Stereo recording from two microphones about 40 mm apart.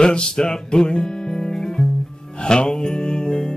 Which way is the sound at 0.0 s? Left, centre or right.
Left.